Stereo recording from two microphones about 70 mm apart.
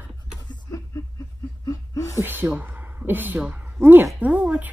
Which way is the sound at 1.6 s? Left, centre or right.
Left.